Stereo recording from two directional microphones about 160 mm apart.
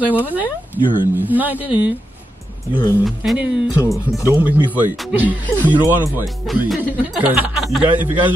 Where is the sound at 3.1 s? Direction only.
Centre (ahead or behind).